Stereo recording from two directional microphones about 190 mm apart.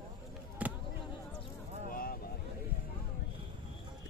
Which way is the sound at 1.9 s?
50° left (ahead or behind).